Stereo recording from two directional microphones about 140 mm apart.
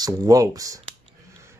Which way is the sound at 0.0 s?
25° right (ahead or behind).